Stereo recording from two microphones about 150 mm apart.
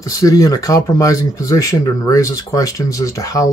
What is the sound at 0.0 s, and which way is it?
Speech, 20° left (ahead or behind).